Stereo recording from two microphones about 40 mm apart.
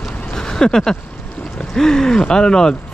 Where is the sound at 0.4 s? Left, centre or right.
Centre.